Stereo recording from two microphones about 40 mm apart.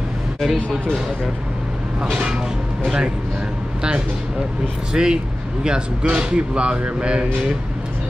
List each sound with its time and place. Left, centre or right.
4.9 s speech: centre